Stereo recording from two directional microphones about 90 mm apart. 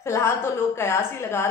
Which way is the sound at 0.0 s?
30° left (ahead or behind).